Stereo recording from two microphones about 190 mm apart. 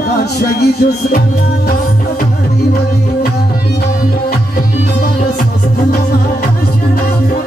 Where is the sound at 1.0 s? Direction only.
45° left (ahead or behind).